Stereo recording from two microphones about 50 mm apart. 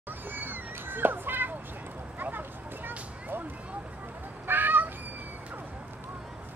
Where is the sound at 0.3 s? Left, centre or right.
Right.